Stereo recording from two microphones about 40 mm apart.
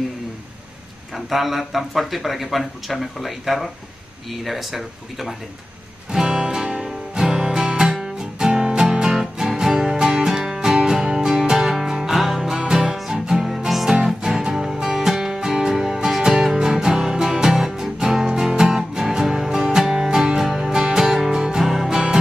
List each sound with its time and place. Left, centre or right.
1.1 s speech: centre
6.2 s music: centre